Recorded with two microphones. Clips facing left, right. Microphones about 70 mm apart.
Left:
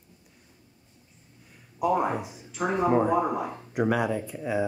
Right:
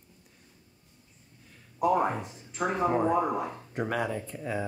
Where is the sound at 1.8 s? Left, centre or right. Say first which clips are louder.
Even; right.